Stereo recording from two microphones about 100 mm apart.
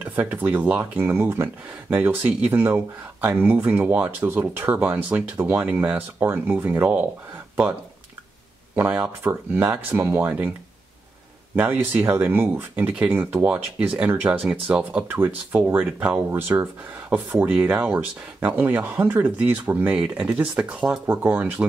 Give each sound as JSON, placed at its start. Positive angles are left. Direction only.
{"t": 0.0, "sound": "speech", "side_deg": -20}
{"t": 8.7, "sound": "speech", "side_deg": -20}
{"t": 11.5, "sound": "speech", "side_deg": -20}